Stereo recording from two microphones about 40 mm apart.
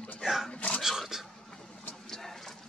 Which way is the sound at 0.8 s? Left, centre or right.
Centre.